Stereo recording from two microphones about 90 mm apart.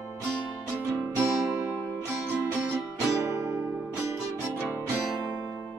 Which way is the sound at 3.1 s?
40° right (ahead or behind).